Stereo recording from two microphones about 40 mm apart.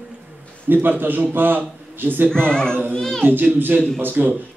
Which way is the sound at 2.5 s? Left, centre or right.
Left.